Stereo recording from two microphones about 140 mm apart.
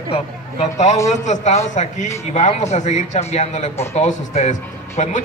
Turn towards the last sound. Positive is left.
turn(degrees=55)  # may be behind; listen again after turning